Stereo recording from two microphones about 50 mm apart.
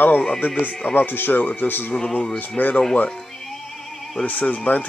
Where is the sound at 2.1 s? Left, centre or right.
Left.